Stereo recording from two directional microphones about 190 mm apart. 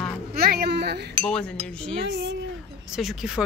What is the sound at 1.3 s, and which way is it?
Speech, 5° left (ahead or behind).